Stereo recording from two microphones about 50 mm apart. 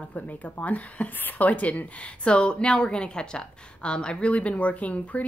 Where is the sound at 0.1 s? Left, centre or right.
Left.